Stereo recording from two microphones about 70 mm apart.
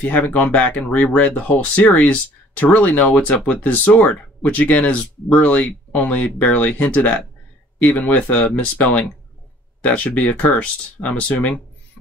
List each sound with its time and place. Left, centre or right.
0.0 s speech: left